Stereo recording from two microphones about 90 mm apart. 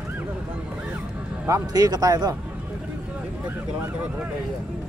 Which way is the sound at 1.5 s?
45° right (ahead or behind).